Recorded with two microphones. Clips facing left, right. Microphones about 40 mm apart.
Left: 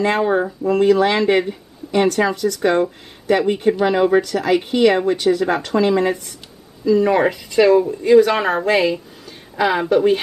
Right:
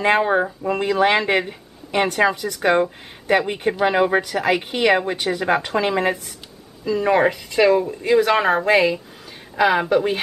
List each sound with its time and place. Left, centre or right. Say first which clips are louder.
0.0 s speech: even; centre
1.3 s speech: left 3 dB; centre